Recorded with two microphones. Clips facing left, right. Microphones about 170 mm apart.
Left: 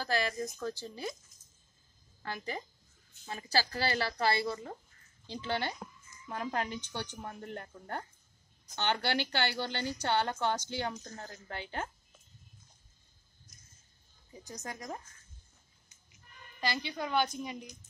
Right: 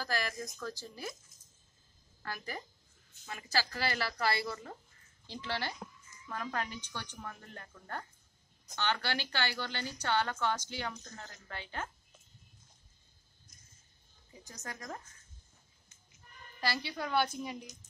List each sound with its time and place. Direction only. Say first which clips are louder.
0.0 s speech: left 4 dB; 25° left (ahead or behind)
2.2 s speech: left 3 dB; 20° left (ahead or behind)
3.3 s a woman's voice: left 3 dB; 30° left (ahead or behind)
14.4 s speech: left 3 dB; 20° left (ahead or behind)
16.8 s speech: left 2 dB; 15° left (ahead or behind)
17.1 s a woman's voice: even; 10° right (ahead or behind)